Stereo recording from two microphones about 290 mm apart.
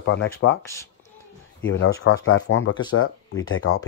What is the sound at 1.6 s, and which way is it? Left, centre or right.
Speech, left.